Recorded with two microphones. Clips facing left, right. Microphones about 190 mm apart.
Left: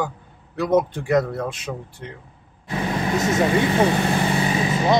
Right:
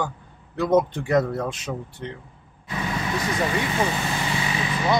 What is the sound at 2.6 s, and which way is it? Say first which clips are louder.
Vehicle: left 4 dB; 35° left (ahead or behind).